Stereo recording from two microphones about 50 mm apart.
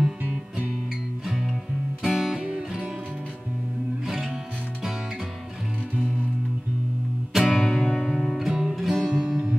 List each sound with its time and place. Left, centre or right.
0.2 s music: right
1.2 s music: centre
4.0 s music: centre
7.3 s music: centre
8.5 s music: centre